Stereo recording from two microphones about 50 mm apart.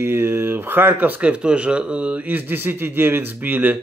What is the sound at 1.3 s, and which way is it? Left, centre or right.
Speech, right.